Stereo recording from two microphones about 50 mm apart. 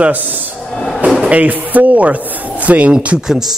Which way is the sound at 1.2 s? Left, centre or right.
Right.